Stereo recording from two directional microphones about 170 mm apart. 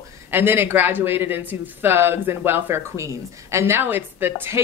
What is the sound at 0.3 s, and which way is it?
A woman's voice, 15° right (ahead or behind).